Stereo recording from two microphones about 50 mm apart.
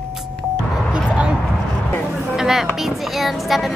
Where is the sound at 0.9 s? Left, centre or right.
Centre.